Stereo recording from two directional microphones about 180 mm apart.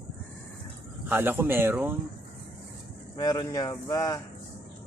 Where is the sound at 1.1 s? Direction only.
10° right (ahead or behind).